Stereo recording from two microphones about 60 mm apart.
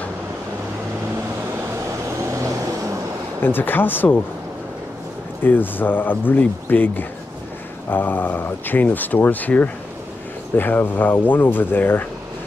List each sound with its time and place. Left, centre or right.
2.3 s vehicle: right
3.4 s speech: left
5.4 s speech: left